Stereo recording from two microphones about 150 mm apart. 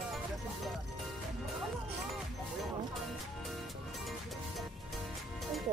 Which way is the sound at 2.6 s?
Centre (ahead or behind).